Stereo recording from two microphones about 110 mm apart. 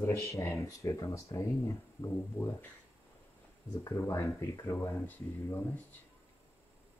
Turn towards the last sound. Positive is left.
turn(degrees=20)  # may be behind; listen again after turning